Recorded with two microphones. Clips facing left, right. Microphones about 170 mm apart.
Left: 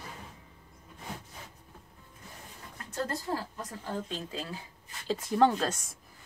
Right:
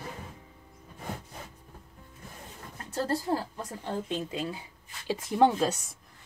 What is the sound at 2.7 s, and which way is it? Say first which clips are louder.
Speech: right 4 dB; 30° right (ahead or behind).